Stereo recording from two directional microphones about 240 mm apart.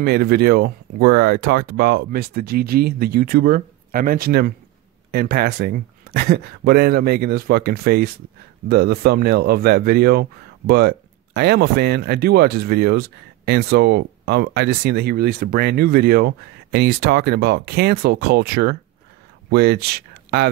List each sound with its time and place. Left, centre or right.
0.0 s speech: right